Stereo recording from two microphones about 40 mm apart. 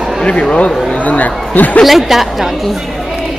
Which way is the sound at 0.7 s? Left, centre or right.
Centre.